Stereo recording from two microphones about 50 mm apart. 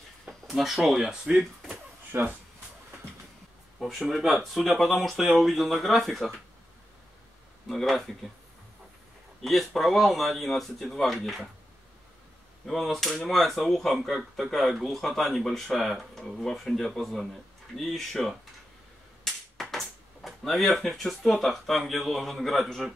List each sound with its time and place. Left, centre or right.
0.5 s speech: centre
1.4 s a sound: centre
2.1 s speech: right
4.4 s speech: centre
7.6 s speech: centre
9.4 s speech: centre
12.6 s speech: centre
19.6 s speech: centre